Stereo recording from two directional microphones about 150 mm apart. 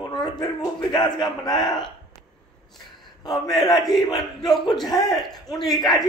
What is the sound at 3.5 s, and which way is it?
Speech, 25° left (ahead or behind).